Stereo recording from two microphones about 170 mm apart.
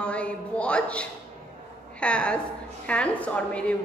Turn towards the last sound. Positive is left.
turn(degrees=10)  # may be behind; listen again after turning